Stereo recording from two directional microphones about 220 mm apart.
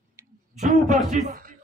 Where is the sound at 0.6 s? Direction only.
35° right (ahead or behind).